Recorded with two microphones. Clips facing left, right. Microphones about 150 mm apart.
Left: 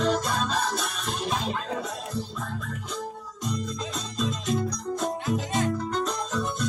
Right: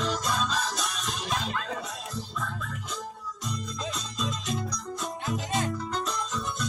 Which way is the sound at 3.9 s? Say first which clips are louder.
Left 4 dB; 50° left (ahead or behind).